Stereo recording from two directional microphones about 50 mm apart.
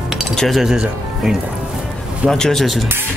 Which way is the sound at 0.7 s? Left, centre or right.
Centre.